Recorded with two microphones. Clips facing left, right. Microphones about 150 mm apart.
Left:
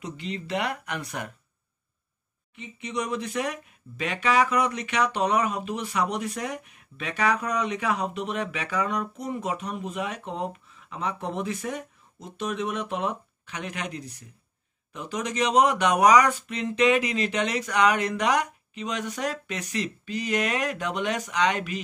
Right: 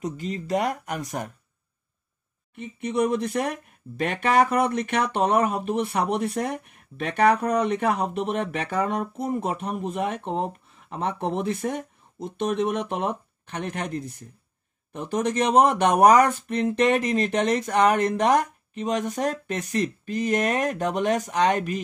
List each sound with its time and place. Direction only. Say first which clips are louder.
0.0 s speech: right 4 dB; 45° right (ahead or behind)
2.5 s speech: right 6 dB; 55° right (ahead or behind)